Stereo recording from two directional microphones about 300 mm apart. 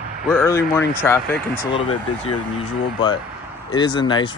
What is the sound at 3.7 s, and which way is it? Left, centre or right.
Speech, centre.